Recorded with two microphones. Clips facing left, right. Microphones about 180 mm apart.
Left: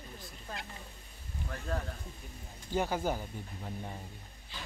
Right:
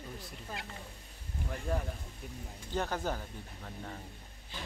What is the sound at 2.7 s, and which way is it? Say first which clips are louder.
Speech: left 3 dB; 10° left (ahead or behind).